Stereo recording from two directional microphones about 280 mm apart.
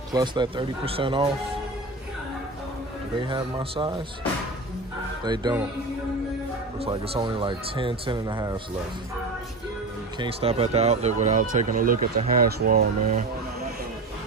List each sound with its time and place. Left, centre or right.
0.1 s speech: centre
3.2 s speech: centre
5.2 s speech: centre
6.8 s speech: centre
10.1 s speech: centre